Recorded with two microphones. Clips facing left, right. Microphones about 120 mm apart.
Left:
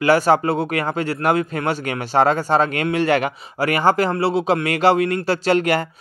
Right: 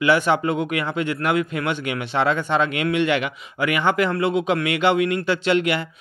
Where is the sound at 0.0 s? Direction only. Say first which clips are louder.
Left 3 dB; 40° left (ahead or behind).